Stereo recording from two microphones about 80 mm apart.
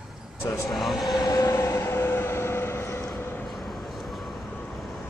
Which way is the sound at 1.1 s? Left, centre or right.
Left.